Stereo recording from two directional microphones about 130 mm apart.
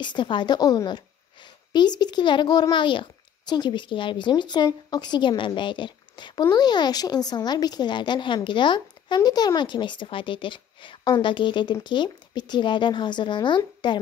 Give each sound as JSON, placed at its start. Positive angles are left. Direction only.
{"t": 0.0, "sound": "a woman's voice", "side_deg": 35}